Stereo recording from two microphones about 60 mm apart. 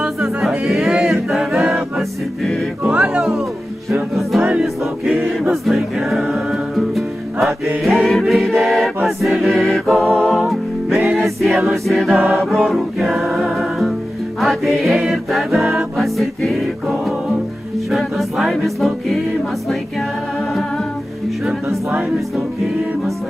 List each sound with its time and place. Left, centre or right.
0.0 s music: centre
2.8 s music: centre
4.1 s music: centre
8.2 s choir: centre
10.1 s music: centre